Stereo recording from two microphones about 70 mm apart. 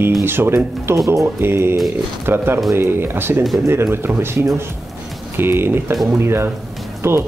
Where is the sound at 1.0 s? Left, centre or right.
Right.